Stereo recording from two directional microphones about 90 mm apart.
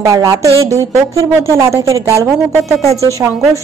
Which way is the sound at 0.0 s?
40° right (ahead or behind).